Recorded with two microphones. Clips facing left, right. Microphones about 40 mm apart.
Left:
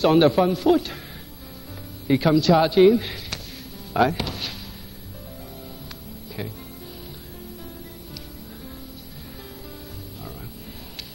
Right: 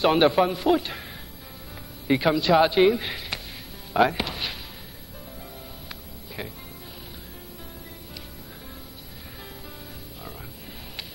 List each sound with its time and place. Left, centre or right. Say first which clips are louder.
0.0 s a man's voice: left 2 dB; centre
2.0 s a man's voice: left 3 dB; centre
6.4 s a man's voice: left 2 dB; centre